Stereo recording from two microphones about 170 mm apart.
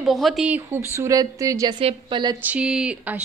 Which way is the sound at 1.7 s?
30° right (ahead or behind).